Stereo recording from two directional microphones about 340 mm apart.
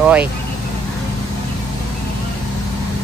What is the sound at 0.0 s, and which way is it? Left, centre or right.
Speech, centre.